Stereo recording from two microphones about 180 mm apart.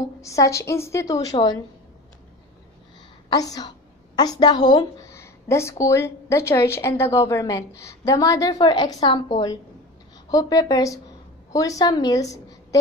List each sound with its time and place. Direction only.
0.2 s a woman's voice: 15° left (ahead or behind)
3.3 s a woman's voice: 20° left (ahead or behind)